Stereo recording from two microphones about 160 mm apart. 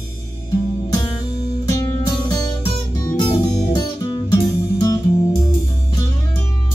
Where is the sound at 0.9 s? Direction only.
25° left (ahead or behind).